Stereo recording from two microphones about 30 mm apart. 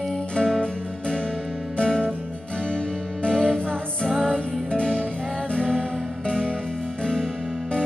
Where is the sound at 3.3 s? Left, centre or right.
Left.